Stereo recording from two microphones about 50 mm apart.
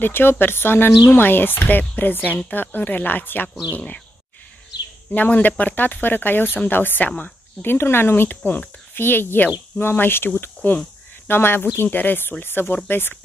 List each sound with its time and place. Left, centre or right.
0.0 s speech: left
5.1 s speech: left
7.6 s speech: left
11.2 s speech: left
11.8 s speech: left